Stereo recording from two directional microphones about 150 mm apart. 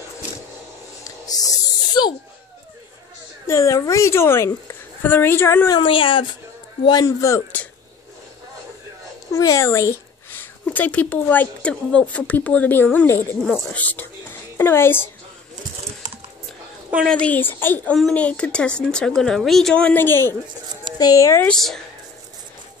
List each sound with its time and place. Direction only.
1.0 s a sound: 25° left (ahead or behind)
3.4 s speech: 20° left (ahead or behind)
5.7 s speech: 35° left (ahead or behind); by 7.6 s 20° left (ahead or behind)
9.3 s speech: 20° left (ahead or behind)
17.1 s speech: 10° left (ahead or behind)
21.5 s speech: 5° left (ahead or behind)